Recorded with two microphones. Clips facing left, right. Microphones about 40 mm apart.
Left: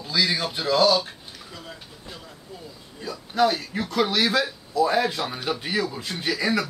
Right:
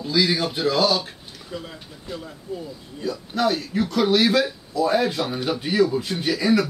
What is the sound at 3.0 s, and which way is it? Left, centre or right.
A man's voice, centre.